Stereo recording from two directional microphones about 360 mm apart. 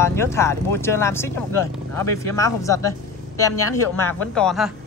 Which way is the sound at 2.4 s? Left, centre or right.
Centre.